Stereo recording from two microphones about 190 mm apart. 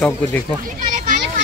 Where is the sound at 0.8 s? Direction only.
45° right (ahead or behind).